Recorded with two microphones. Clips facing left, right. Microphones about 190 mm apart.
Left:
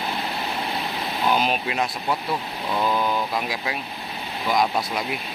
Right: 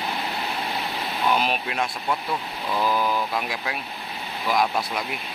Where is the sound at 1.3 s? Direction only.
Centre (ahead or behind).